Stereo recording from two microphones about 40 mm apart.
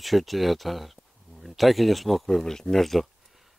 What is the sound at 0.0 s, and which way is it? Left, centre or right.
Speech, centre.